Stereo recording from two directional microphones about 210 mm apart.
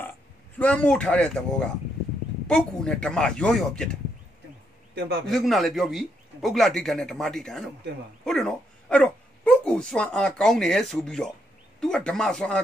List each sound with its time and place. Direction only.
0.6 s a man's voice: 5° left (ahead or behind)
4.9 s a man's voice: 55° right (ahead or behind)
5.2 s a man's voice: centre (ahead or behind)